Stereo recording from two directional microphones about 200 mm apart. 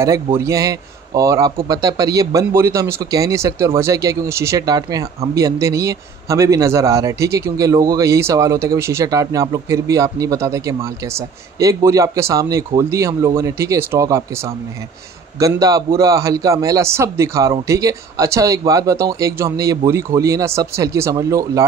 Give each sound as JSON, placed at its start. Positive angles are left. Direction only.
{"t": 0.0, "sound": "a man's voice", "side_deg": -15}